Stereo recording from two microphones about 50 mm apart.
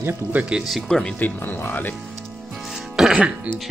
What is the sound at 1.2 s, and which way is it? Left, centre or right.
Speech, left.